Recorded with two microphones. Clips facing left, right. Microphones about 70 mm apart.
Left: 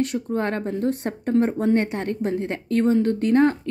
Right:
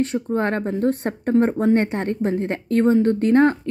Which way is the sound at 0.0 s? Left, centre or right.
Right.